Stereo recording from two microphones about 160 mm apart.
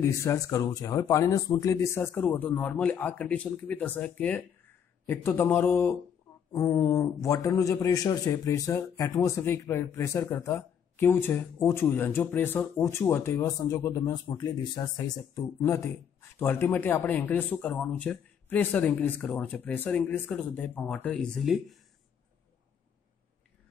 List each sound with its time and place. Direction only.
0.0 s a man's voice: 20° left (ahead or behind); by 21.7 s centre (ahead or behind)